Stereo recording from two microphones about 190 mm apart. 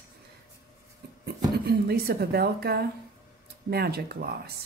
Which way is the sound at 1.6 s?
55° right (ahead or behind).